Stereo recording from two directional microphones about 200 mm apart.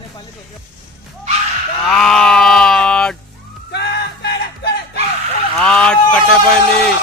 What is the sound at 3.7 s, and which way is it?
Music, 55° left (ahead or behind).